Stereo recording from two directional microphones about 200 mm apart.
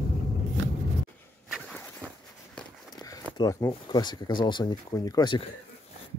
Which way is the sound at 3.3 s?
20° left (ahead or behind).